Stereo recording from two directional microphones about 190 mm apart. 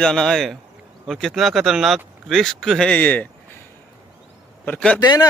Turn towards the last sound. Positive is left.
turn(degrees=20)  # may be behind; listen again after turning